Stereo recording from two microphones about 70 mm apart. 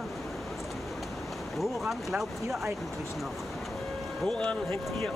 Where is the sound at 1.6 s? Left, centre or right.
Centre.